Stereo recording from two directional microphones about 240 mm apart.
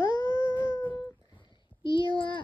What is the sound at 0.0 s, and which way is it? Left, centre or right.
Wail, centre.